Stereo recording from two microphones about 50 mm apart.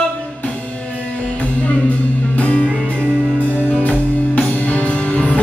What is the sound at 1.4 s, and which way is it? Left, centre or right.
Music, left.